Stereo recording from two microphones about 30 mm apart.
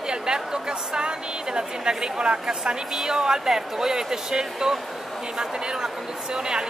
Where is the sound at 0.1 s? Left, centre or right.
Right.